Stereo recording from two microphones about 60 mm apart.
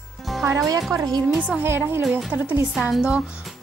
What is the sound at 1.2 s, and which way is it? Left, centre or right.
Speech, centre.